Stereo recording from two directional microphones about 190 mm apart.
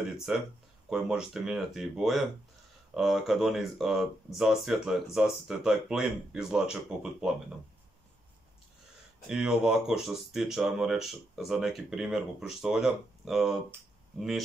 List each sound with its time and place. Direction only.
0.3 s speech: 5° right (ahead or behind)
9.3 s speech: 5° right (ahead or behind)